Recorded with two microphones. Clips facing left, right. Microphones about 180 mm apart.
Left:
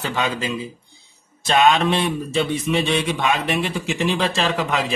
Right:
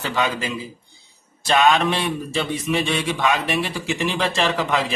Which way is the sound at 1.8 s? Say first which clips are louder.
Left 2 dB; 25° left (ahead or behind).